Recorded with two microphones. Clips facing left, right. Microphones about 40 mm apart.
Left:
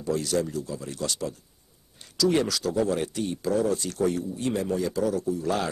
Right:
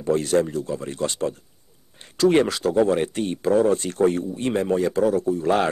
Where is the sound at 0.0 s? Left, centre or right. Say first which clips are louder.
Right 6 dB; right.